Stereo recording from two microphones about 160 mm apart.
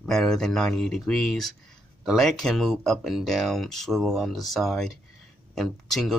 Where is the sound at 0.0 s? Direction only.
Centre (ahead or behind).